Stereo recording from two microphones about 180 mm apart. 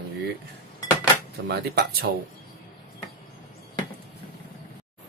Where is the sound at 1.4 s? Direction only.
60° right (ahead or behind).